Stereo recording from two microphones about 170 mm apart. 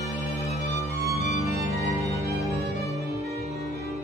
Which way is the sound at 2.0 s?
20° left (ahead or behind).